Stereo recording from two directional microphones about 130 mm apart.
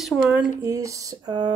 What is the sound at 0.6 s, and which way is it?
Speech, 25° right (ahead or behind).